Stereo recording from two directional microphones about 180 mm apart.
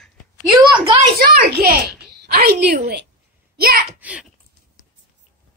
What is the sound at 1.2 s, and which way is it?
A woman's voice, 60° right (ahead or behind).